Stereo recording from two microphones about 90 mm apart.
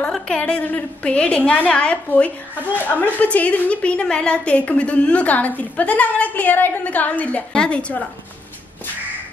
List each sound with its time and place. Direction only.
0.1 s a woman's voice: 10° left (ahead or behind)